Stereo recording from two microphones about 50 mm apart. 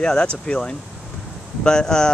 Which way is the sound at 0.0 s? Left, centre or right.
Centre.